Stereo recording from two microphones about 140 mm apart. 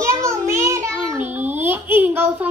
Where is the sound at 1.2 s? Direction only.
15° right (ahead or behind).